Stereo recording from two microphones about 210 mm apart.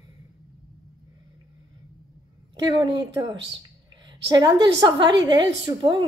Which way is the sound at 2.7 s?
20° right (ahead or behind).